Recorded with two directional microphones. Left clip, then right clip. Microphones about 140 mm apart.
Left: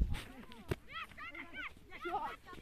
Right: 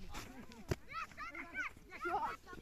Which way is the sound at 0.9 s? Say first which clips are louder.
Right 1 dB; 15° left (ahead or behind).